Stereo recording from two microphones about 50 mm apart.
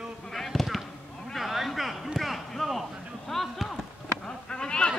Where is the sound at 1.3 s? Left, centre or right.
Centre.